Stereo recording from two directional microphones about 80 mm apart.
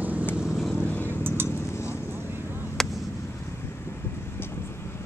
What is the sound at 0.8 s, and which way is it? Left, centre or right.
Vehicle, left.